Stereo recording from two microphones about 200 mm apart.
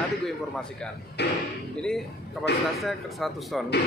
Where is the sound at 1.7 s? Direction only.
5° left (ahead or behind).